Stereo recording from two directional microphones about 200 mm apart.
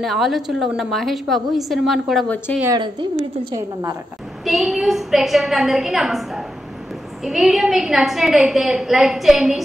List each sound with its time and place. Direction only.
0.0 s a woman's voice: centre (ahead or behind)
2.6 s a woman's voice: 20° right (ahead or behind)
4.5 s a woman's voice: centre (ahead or behind)